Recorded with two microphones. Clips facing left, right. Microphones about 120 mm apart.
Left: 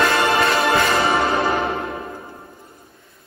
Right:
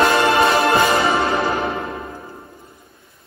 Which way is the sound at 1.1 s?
Centre (ahead or behind).